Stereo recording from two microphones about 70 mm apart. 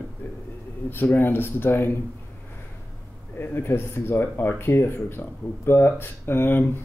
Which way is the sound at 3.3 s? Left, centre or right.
Left.